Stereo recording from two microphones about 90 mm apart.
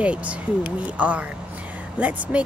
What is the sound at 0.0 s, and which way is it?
Speech, 15° right (ahead or behind).